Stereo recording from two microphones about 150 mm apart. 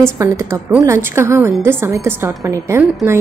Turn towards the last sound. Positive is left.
turn(degrees=-15)  # may be behind; listen again after turning